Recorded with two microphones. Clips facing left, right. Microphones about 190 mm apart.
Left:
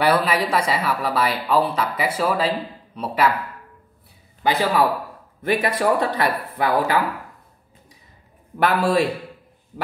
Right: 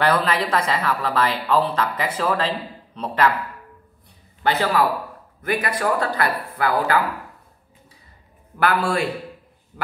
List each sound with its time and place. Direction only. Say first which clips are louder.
0.0 s a woman's voice: left 1 dB; 10° left (ahead or behind)
4.4 s a man's voice: left 1 dB; 15° left (ahead or behind)
5.4 s speech: left 3 dB; 25° left (ahead or behind)
8.5 s speech: left 1 dB; 20° left (ahead or behind)